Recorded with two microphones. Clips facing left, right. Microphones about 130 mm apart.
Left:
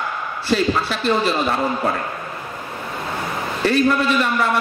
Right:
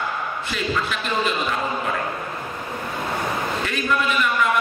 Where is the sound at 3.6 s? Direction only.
35° left (ahead or behind).